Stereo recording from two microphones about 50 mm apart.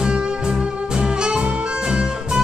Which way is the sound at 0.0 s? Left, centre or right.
Centre.